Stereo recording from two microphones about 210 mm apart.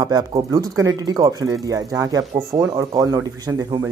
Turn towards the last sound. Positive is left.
turn(degrees=-15)  # may be behind; listen again after turning